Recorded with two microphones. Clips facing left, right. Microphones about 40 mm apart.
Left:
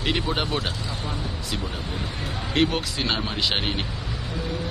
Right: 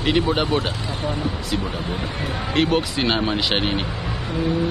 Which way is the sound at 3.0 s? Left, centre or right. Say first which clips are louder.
Right 6 dB; centre.